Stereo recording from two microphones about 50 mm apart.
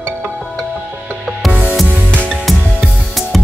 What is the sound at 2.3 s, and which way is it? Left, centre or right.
Music, centre.